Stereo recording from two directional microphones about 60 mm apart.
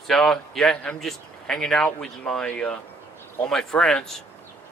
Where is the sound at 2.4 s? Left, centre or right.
Centre.